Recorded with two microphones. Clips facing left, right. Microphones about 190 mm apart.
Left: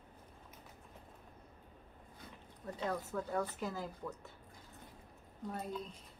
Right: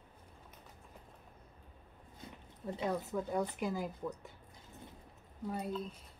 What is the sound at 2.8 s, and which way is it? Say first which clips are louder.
Speech: right 2 dB; 15° right (ahead or behind).